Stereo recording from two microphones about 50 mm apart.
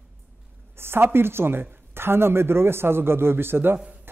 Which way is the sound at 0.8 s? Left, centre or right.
Right.